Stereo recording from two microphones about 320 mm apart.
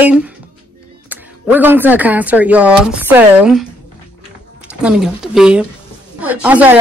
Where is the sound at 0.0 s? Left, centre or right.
Centre.